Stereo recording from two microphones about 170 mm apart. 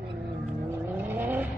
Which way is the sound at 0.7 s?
10° right (ahead or behind).